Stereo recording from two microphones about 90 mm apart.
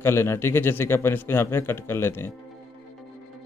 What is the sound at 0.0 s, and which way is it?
Speech, 30° left (ahead or behind).